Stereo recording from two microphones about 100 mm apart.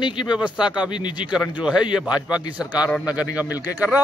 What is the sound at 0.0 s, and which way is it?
Speech, 55° left (ahead or behind).